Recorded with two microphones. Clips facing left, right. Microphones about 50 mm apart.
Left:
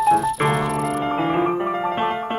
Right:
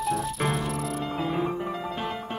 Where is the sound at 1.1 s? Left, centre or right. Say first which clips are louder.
Left 8 dB; left.